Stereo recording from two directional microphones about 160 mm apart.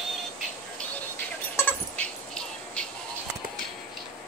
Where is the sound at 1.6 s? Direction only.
10° left (ahead or behind).